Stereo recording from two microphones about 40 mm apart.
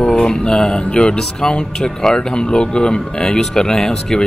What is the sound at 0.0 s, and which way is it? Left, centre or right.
Speech, centre.